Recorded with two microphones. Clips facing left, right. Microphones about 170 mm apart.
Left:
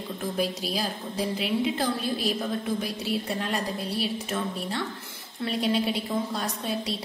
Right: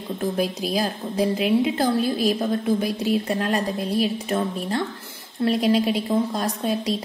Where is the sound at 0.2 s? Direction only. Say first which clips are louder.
Right 5 dB; 45° right (ahead or behind).